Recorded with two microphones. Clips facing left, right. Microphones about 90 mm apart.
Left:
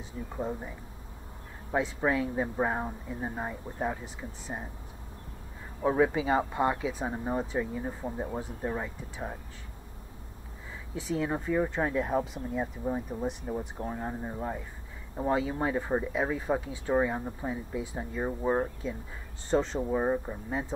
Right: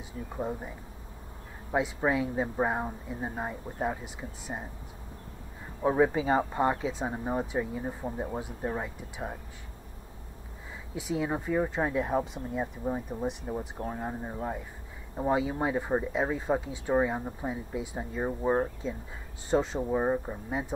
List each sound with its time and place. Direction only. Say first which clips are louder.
0.4 s speech: even; 10° right (ahead or behind)
5.8 s a woman's voice: right 1 dB; 20° right (ahead or behind)
7.1 s speech: even; 10° right (ahead or behind)
11.0 s speech: even; 10° right (ahead or behind)
16.1 s a woman's voice: right 1 dB; 25° right (ahead or behind)
16.9 s speech: even; 10° right (ahead or behind)
18.2 s speech: right 1 dB; 5° right (ahead or behind)